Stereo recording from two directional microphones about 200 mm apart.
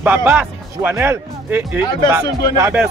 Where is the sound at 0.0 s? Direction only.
10° right (ahead or behind).